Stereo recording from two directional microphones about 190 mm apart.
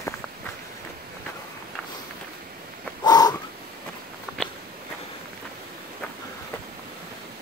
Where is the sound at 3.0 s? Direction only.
20° left (ahead or behind).